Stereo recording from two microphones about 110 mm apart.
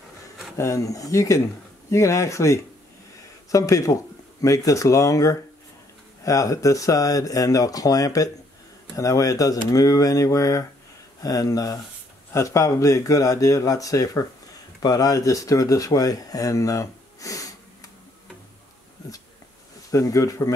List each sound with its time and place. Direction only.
0.6 s speech: 30° left (ahead or behind)
19.9 s speech: 30° left (ahead or behind)